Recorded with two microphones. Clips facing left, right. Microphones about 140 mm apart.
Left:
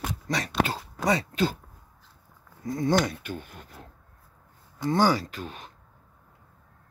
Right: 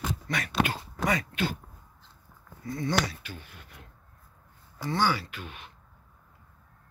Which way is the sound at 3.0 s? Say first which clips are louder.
Left 6 dB; 50° left (ahead or behind).